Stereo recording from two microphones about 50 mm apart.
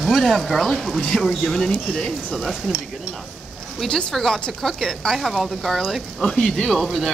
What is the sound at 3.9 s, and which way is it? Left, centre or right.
Speech, centre.